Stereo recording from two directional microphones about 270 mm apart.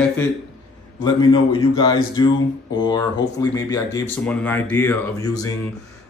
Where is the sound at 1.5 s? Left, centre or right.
Centre.